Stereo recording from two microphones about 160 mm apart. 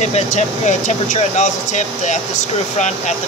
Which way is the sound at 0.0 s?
45° left (ahead or behind).